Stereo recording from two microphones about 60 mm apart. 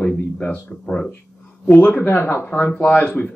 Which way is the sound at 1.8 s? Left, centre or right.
Left.